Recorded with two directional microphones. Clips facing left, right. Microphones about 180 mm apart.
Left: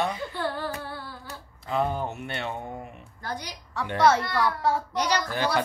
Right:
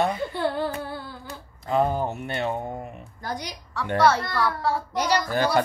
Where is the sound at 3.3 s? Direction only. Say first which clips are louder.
Right 3 dB; 15° right (ahead or behind).